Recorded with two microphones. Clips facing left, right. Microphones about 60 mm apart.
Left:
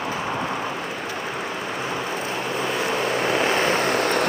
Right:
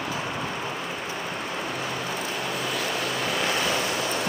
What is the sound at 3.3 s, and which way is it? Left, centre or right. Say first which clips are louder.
Vehicle: left 5 dB; left.